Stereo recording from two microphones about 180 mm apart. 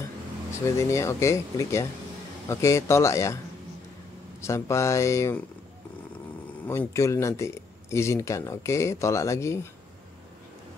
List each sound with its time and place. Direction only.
0.5 s speech: 15° left (ahead or behind)
4.4 s speech: 15° left (ahead or behind)
6.6 s speech: 15° left (ahead or behind)